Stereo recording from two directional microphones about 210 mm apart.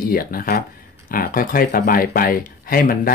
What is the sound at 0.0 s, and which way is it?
Speech, 45° left (ahead or behind).